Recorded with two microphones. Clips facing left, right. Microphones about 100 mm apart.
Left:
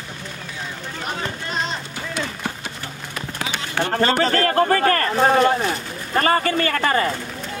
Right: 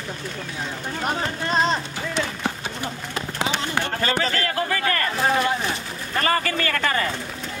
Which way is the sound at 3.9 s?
40° left (ahead or behind).